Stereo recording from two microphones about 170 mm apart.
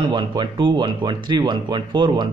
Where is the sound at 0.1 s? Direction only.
25° right (ahead or behind).